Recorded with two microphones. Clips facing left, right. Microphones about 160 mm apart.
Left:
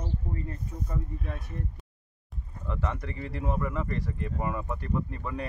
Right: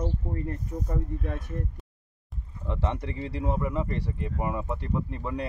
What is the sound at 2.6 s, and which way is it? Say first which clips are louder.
Speech: right 3 dB; 25° right (ahead or behind).